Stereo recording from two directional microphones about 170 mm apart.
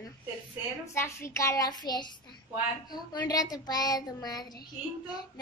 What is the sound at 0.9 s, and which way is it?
A woman's voice, 15° left (ahead or behind).